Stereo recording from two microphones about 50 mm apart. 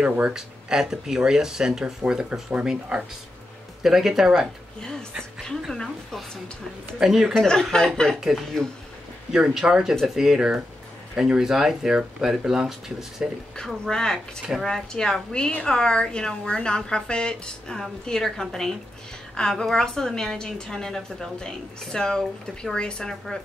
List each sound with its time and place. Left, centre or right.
0.0 s speech: right
0.3 s speech: centre
7.0 s speech: centre
7.3 s a woman's voice: centre
9.3 s speech: centre
13.8 s a woman's voice: centre